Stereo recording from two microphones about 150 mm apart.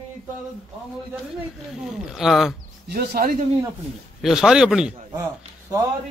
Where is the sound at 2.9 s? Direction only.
90° right.